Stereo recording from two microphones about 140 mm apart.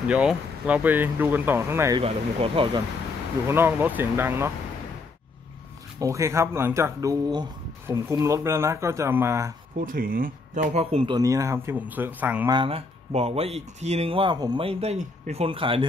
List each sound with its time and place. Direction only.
0.1 s speech: 10° right (ahead or behind)
2.0 s speech: 40° right (ahead or behind)
3.4 s speech: 15° right (ahead or behind)
5.9 s speech: 20° right (ahead or behind)
9.8 s speech: 80° right; by 11.1 s 45° right (ahead or behind)
11.1 s speech: 25° right (ahead or behind)
12.4 s speech: 40° right (ahead or behind)